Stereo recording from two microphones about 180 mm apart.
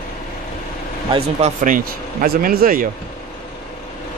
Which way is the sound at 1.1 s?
35° right (ahead or behind).